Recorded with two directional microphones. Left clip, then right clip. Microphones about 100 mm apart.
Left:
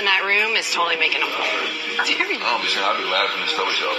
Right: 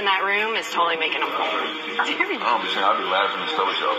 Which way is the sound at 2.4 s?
25° left (ahead or behind).